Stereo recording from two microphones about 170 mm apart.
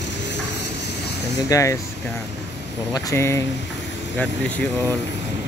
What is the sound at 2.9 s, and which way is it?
Speech, 15° left (ahead or behind).